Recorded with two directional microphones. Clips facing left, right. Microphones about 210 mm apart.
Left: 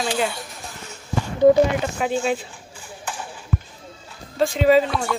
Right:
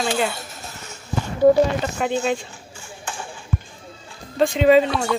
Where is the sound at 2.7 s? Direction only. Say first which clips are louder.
Left 1 dB; 25° right (ahead or behind).